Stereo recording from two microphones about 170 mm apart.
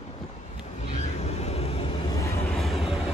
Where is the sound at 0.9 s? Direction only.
40° left (ahead or behind).